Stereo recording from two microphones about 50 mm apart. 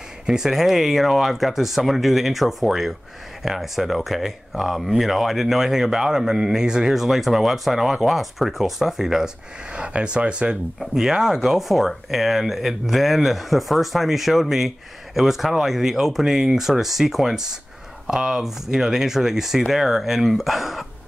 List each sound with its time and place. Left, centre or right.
0.3 s speech: centre
7.0 s speech: centre
9.7 s speech: right
10.8 s speech: centre